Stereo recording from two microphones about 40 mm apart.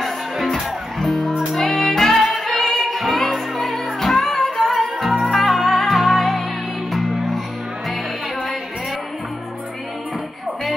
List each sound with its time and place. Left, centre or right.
0.0 s music: centre